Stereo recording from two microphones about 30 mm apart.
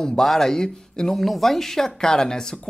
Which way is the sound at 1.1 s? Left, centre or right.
Centre.